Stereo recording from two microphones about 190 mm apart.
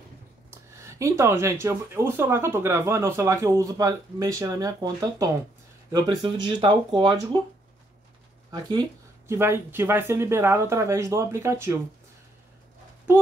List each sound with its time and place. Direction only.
0.5 s speech: 15° right (ahead or behind)
8.5 s speech: 20° right (ahead or behind)
9.3 s speech: 10° right (ahead or behind)